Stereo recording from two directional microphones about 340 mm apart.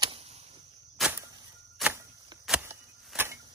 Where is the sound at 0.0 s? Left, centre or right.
Centre.